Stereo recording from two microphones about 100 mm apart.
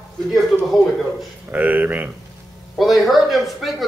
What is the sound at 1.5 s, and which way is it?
Speech, 15° right (ahead or behind).